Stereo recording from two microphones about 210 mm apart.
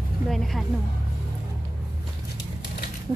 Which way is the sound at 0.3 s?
Centre (ahead or behind).